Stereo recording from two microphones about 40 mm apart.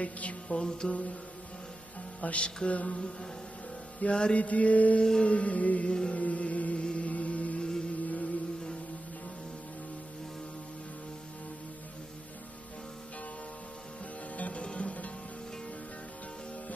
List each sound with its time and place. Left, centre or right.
0.0 s music: left
2.2 s music: left
4.1 s music: left
4.4 s music: left
5.9 s music: left
6.1 s music: left
6.8 s chant: left
7.1 s chant: left
8.0 s music: left
14.3 s music: left
14.6 s music: left